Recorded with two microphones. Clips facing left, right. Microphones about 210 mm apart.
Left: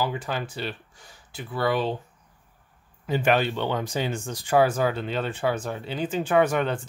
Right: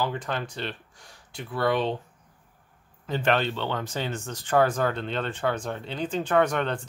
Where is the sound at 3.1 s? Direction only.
10° left (ahead or behind).